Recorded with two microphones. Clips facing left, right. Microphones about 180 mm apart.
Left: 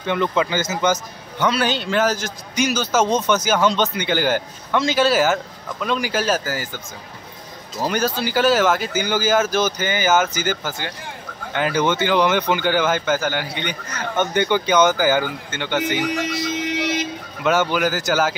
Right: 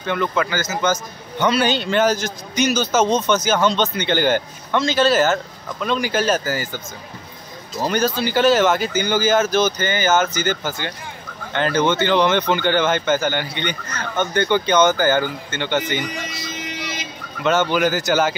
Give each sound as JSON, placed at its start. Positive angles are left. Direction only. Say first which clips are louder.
{"t": 0.0, "sound": "speech", "louder": "left 1 dB", "side_deg": 20}
{"t": 1.4, "sound": "a man's voice", "louder": "right 2 dB", "side_deg": 0}
{"t": 7.8, "sound": "a man's voice", "louder": "right 2 dB", "side_deg": 5}
{"t": 14.1, "sound": "a man's voice", "louder": "even", "side_deg": 15}
{"t": 16.0, "sound": "a sound", "louder": "left 6 dB", "side_deg": 75}
{"t": 17.4, "sound": "speech", "louder": "right 1 dB", "side_deg": 5}